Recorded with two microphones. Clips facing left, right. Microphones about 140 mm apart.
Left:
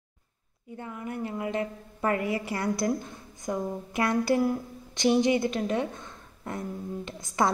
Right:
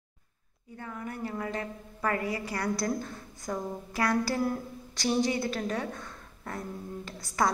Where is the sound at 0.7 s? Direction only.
20° left (ahead or behind).